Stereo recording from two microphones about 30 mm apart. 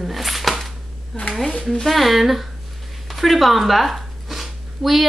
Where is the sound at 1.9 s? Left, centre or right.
Centre.